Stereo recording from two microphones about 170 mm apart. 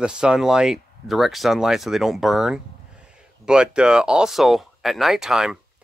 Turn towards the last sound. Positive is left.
turn(degrees=-5)  # may be behind; listen again after turning